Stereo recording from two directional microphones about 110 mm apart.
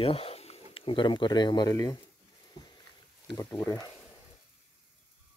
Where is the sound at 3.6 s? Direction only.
30° left (ahead or behind).